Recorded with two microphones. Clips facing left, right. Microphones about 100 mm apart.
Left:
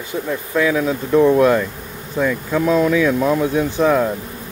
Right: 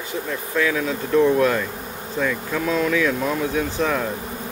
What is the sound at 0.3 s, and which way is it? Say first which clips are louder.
Speech: left 5 dB; 15° left (ahead or behind).